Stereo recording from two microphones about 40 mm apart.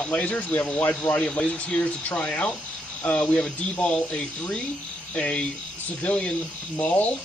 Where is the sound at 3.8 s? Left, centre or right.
Left.